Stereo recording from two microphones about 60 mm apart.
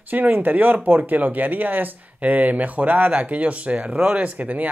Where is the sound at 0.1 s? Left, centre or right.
Right.